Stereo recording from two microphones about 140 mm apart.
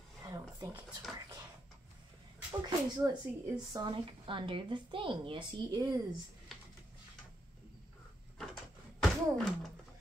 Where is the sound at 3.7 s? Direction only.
35° right (ahead or behind).